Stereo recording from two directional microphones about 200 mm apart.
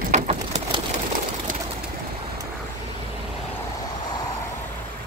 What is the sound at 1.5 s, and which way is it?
Bird, 40° right (ahead or behind).